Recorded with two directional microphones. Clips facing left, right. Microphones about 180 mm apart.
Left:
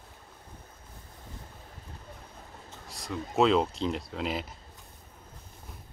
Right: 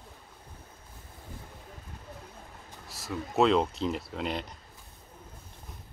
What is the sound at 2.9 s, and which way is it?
Speech, 5° right (ahead or behind).